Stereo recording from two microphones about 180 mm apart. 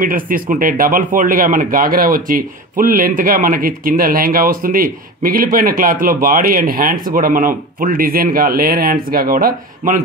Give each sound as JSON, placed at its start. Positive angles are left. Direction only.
{"t": 0.0, "sound": "speech", "side_deg": -50}